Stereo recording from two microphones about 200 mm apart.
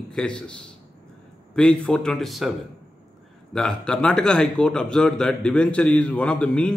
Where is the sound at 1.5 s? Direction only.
5° left (ahead or behind).